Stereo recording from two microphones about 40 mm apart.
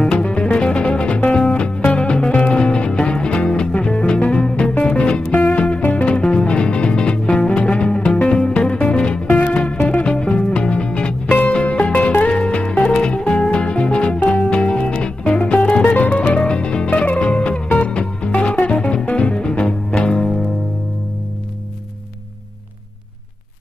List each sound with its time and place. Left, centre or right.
0.1 s music: left
2.9 s music: left
6.0 s music: left
11.6 s music: left
12.3 s music: left
16.4 s music: left